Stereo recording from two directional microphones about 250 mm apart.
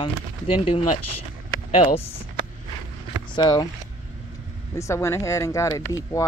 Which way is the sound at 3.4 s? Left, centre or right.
Centre.